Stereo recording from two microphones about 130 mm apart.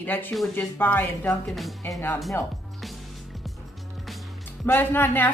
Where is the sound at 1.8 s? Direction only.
25° left (ahead or behind).